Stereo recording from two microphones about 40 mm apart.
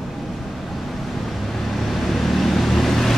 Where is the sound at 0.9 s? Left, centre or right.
Centre.